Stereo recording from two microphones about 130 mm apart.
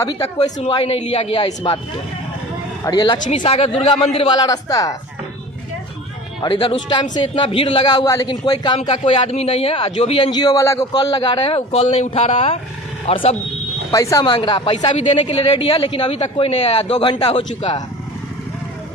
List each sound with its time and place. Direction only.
0.6 s a man's voice: 45° left (ahead or behind)
2.8 s speech: 35° left (ahead or behind)
3.3 s a man's voice: 50° left (ahead or behind)
4.3 s a man's voice: 30° left (ahead or behind)
6.4 s a man's voice: 40° left (ahead or behind)
10.3 s a man's voice: 30° left (ahead or behind)
10.9 s a man's voice: 35° left (ahead or behind)
13.9 s a man's voice: 25° left (ahead or behind)
14.2 s a man's voice: 40° left (ahead or behind)